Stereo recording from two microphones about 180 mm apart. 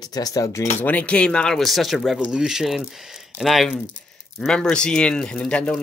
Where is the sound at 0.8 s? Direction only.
10° left (ahead or behind).